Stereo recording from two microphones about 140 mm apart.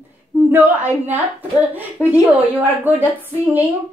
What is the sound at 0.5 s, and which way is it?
A woman's voice, 15° right (ahead or behind).